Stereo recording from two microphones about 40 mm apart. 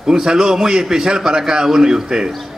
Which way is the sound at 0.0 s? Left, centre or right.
Centre.